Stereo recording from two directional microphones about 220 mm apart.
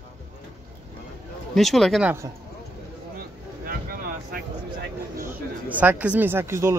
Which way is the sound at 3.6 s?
40° right (ahead or behind).